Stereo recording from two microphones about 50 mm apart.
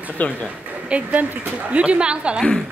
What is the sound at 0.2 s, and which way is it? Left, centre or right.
Speech, left.